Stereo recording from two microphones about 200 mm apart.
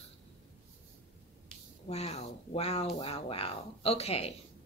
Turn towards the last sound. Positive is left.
turn(degrees=30)  # may be behind; listen again after turning